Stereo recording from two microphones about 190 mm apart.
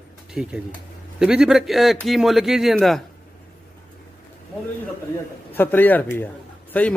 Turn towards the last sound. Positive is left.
turn(degrees=10)  # may be behind; listen again after turning